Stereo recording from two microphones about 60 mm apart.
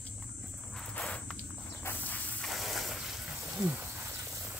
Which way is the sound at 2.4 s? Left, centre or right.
Centre.